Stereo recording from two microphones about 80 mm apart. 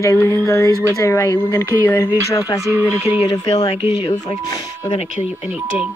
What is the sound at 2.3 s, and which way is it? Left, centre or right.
Speech, left.